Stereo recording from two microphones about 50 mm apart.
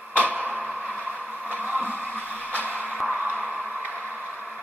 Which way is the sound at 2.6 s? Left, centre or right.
Right.